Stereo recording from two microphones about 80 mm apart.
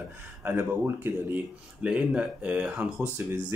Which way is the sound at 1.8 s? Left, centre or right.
Centre.